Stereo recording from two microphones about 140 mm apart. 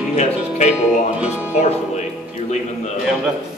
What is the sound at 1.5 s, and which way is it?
Speech, 55° left (ahead or behind).